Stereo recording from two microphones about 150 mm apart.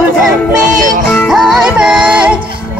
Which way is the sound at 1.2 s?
5° right (ahead or behind).